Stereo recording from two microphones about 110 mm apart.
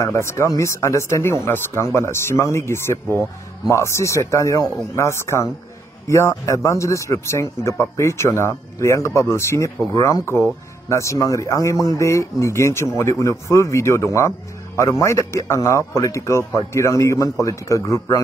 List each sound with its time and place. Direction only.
0.0 s speech: 25° left (ahead or behind)